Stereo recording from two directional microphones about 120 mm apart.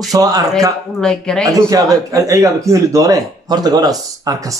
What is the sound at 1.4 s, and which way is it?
Speech, 30° right (ahead or behind).